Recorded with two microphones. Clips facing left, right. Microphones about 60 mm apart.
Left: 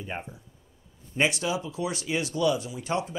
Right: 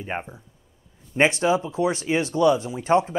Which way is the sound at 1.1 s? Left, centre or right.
Right.